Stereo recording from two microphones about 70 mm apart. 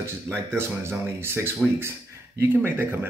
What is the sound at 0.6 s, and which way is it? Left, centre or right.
Speech, right.